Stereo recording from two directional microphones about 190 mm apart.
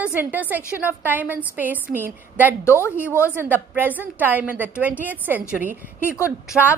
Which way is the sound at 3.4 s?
10° right (ahead or behind).